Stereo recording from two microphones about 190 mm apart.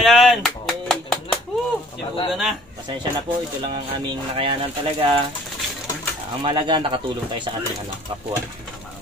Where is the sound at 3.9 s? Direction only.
25° right (ahead or behind).